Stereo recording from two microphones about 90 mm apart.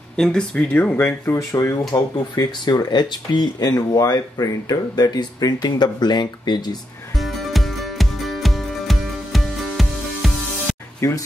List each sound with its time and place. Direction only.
0.2 s speech: 5° left (ahead or behind)
0.7 s speech: 20° left (ahead or behind)
1.9 s speech: 50° left (ahead or behind)
7.2 s music: centre (ahead or behind)
11.0 s speech: 30° left (ahead or behind)